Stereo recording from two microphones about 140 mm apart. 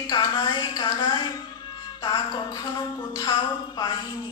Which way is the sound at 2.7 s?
30° left (ahead or behind).